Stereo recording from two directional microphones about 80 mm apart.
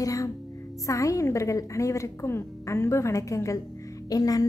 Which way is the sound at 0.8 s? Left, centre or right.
Left.